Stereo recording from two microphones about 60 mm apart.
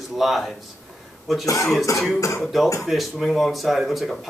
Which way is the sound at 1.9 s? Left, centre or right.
Left.